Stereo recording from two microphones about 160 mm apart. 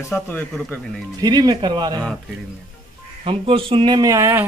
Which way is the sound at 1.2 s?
25° right (ahead or behind).